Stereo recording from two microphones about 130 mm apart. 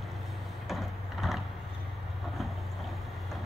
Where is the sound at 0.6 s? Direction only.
Centre (ahead or behind).